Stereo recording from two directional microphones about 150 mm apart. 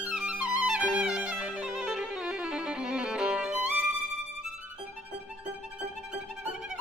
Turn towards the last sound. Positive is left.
turn(degrees=-5)  # may be behind; listen again after turning